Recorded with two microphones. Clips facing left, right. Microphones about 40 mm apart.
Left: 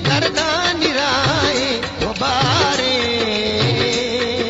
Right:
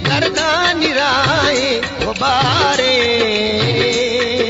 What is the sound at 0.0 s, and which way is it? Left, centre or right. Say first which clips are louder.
Music: right 2 dB; centre.